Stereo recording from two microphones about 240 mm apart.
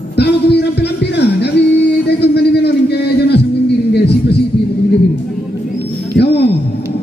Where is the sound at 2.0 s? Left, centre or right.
Left.